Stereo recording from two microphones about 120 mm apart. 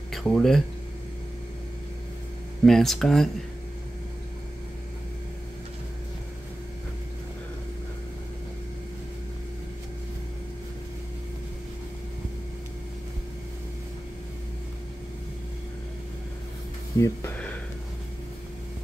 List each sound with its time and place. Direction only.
0.1 s speech: centre (ahead or behind)
2.6 s speech: centre (ahead or behind)
17.0 s speech: 25° left (ahead or behind)